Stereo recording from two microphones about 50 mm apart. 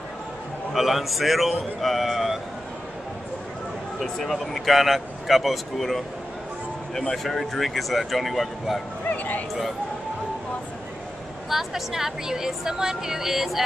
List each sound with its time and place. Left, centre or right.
0.7 s speech: centre
4.2 s speech: centre
7.2 s speech: centre
9.1 s a sound: left
11.4 s a woman's voice: centre